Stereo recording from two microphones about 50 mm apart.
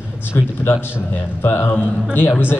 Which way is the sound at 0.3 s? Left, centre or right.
Left.